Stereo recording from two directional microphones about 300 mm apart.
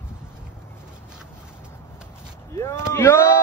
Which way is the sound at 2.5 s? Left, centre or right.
Centre.